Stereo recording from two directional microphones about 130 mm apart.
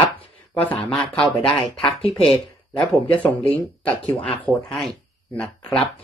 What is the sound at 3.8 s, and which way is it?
Speech, 10° left (ahead or behind).